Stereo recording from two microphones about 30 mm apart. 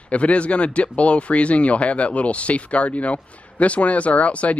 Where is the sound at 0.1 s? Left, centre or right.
Left.